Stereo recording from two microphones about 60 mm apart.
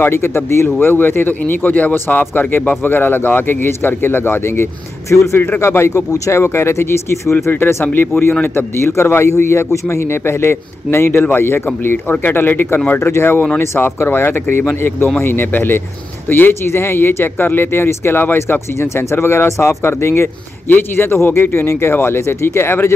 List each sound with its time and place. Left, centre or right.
0.0 s a man's voice: left
5.1 s speech: left
5.6 s a man's voice: left
6.1 s speech: left
6.4 s a man's voice: left
18.7 s a man's voice: left
19.8 s a man's voice: left